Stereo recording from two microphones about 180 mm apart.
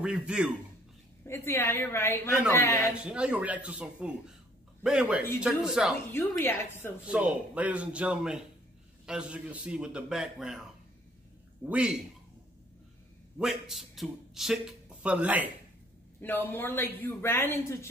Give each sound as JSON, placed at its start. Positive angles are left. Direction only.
{"t": 0.0, "sound": "a man's voice", "side_deg": -5}
{"t": 1.2, "sound": "speech", "side_deg": 15}
{"t": 2.9, "sound": "a man's voice", "side_deg": -5}
{"t": 6.1, "sound": "speech", "side_deg": 15}
{"t": 7.1, "sound": "a man's voice", "side_deg": -5}
{"t": 11.7, "sound": "a man's voice", "side_deg": -5}
{"t": 13.4, "sound": "speech", "side_deg": 0}
{"t": 16.2, "sound": "speech", "side_deg": 10}